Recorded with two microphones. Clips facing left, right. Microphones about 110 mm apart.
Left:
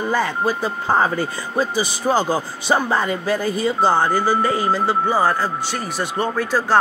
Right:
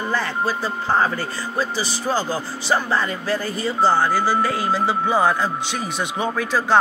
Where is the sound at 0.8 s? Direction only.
15° left (ahead or behind).